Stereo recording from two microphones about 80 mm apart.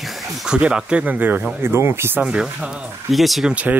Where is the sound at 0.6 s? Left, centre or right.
Centre; by 2.2 s right.